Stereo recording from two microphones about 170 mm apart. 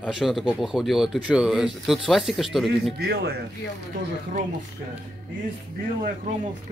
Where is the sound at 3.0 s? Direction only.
75° right (ahead or behind).